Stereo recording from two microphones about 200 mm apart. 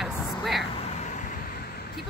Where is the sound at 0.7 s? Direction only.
35° left (ahead or behind).